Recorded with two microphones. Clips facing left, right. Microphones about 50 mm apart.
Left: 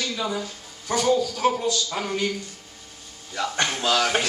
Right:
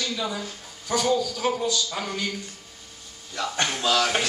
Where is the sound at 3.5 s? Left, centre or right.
Centre.